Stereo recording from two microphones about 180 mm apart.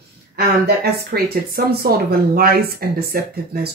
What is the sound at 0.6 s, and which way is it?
Speech, 60° right (ahead or behind).